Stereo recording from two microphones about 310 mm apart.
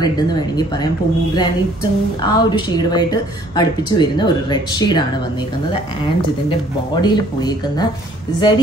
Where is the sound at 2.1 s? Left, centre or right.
Centre.